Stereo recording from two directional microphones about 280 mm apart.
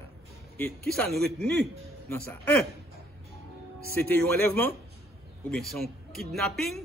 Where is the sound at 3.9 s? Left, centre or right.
Centre.